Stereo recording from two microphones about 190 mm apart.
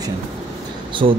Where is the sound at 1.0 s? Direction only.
30° right (ahead or behind).